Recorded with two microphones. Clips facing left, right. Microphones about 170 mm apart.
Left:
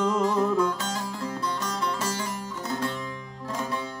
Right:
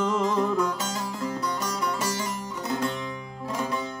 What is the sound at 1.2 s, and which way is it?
Music, 15° right (ahead or behind).